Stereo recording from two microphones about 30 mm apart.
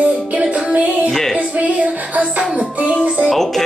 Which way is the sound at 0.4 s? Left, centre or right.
Right.